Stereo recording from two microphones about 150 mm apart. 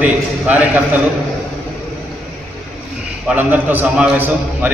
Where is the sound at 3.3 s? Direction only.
10° right (ahead or behind).